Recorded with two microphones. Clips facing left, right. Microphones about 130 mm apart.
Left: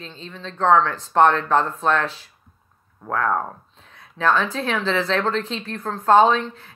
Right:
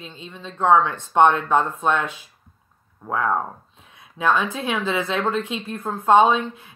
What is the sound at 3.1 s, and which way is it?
Speech, 10° right (ahead or behind).